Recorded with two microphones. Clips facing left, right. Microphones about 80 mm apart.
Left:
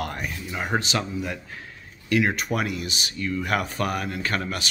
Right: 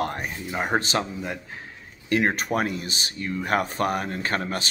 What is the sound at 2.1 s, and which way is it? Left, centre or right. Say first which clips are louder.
Speech: even; right.